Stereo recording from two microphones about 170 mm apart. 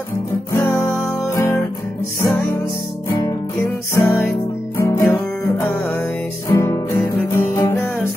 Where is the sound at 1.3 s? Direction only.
15° left (ahead or behind).